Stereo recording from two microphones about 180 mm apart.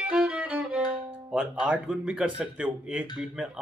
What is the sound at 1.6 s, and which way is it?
Speech, 5° right (ahead or behind).